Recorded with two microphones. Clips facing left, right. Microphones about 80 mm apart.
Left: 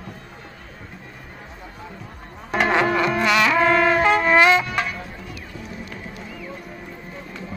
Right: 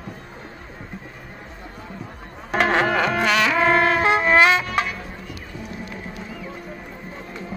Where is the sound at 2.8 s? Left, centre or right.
Right.